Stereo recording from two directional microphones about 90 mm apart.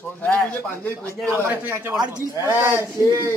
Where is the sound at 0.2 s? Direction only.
15° left (ahead or behind).